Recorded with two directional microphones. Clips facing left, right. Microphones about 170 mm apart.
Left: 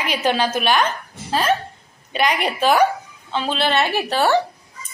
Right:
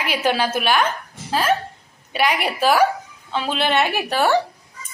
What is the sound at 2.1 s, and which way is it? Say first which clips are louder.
A woman's voice: even; 5° right (ahead or behind).